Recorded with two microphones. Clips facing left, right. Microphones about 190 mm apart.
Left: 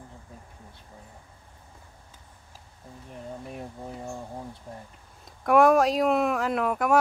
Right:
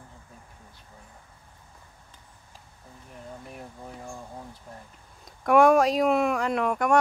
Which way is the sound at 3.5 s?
25° left (ahead or behind).